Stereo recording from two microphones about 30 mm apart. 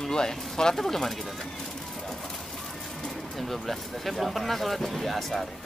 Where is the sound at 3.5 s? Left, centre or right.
Centre.